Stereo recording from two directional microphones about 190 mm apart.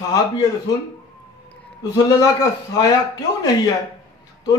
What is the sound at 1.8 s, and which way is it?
Speech, 20° left (ahead or behind).